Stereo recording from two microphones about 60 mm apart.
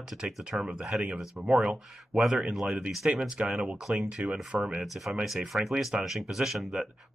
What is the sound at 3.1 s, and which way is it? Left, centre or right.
Speech, centre.